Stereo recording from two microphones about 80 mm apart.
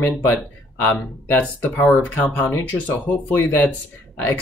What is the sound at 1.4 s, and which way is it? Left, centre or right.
Speech, centre.